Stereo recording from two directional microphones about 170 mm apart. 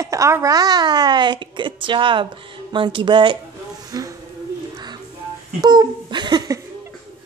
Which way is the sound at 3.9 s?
20° right (ahead or behind).